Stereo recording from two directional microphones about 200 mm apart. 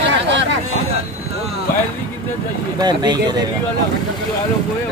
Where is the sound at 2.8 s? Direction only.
20° right (ahead or behind).